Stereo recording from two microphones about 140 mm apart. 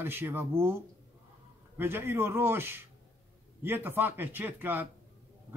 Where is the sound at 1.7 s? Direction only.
15° right (ahead or behind).